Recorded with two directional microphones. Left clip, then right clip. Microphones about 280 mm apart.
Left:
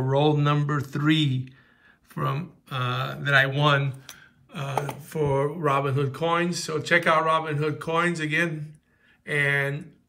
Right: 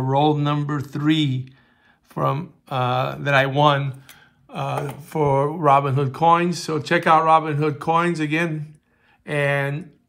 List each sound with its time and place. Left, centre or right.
0.0 s speech: centre